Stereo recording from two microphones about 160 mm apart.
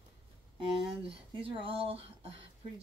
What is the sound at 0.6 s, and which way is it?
Speech, 35° right (ahead or behind).